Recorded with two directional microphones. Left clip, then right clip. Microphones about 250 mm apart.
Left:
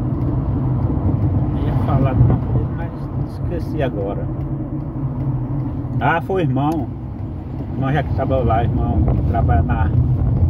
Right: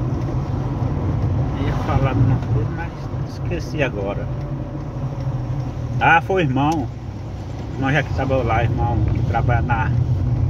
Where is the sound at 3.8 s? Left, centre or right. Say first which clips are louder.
Even; centre.